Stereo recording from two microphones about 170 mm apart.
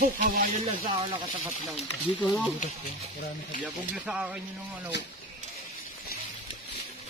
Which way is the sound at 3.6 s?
5° right (ahead or behind).